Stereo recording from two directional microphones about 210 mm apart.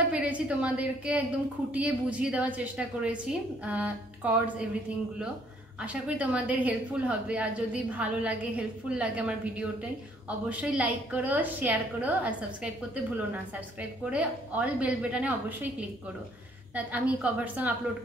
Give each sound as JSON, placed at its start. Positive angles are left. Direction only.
{"t": 0.1, "sound": "a woman's voice", "side_deg": -5}
{"t": 16.7, "sound": "a woman's voice", "side_deg": -5}